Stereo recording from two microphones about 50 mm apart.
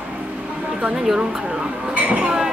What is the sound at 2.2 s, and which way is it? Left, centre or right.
Music, centre.